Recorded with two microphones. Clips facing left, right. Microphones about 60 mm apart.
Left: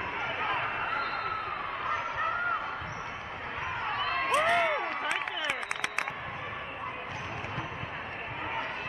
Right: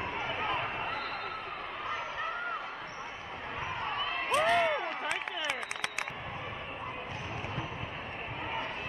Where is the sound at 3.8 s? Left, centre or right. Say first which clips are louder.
Left 4 dB; left.